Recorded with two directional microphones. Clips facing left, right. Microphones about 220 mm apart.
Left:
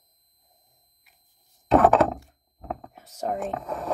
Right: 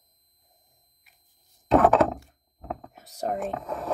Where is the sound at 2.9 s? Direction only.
35° right (ahead or behind).